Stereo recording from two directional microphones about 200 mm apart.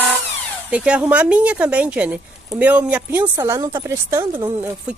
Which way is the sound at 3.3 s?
20° right (ahead or behind).